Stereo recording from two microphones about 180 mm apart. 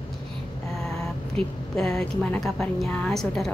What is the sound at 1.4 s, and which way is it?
Speech, 30° right (ahead or behind).